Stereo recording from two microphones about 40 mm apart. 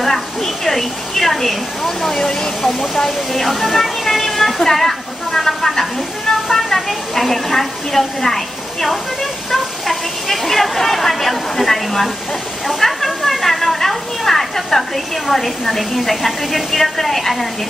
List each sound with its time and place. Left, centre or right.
0.0 s a woman's voice: centre
12.6 s a sound: centre
16.0 s a woman's voice: centre